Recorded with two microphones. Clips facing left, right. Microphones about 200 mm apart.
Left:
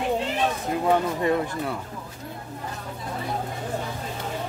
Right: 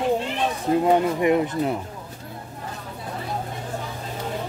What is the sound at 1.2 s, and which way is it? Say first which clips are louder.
Speech: right 4 dB; 20° right (ahead or behind).